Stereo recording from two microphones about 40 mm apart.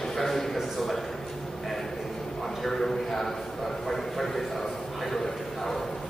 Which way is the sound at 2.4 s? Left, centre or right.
Centre.